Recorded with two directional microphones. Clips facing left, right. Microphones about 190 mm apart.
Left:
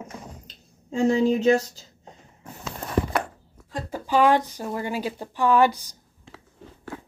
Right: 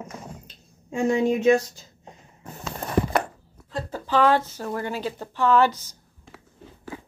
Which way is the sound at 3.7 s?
15° left (ahead or behind).